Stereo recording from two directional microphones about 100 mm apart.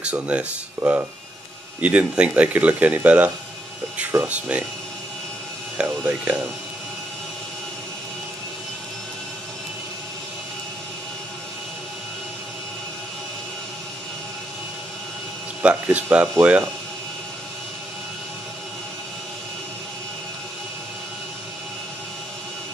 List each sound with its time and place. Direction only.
0.0 s speech: 15° right (ahead or behind)
5.8 s speech: 10° right (ahead or behind)
15.6 s speech: 15° right (ahead or behind)